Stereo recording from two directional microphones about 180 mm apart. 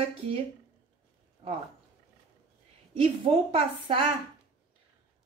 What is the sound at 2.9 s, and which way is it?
A woman's voice, 30° right (ahead or behind).